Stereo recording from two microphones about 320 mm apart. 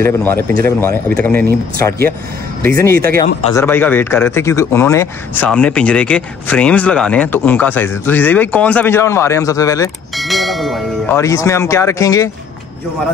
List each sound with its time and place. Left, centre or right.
0.0 s speech: centre
2.9 s speech: right
3.2 s speech: centre